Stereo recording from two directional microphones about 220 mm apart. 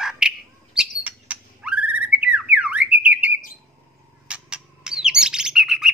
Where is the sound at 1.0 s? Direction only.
5° right (ahead or behind).